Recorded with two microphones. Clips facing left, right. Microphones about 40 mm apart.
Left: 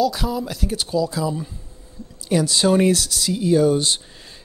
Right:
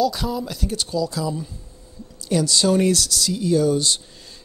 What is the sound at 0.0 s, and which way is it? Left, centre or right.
Speech, centre.